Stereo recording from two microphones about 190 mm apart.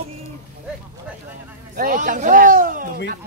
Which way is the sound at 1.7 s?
45° right (ahead or behind).